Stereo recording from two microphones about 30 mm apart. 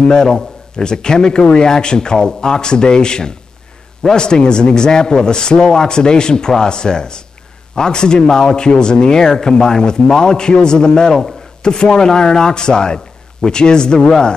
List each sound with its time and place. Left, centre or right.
0.0 s speech: left